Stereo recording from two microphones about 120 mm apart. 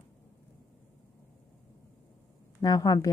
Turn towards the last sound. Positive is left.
turn(degrees=35)  # may be behind; listen again after turning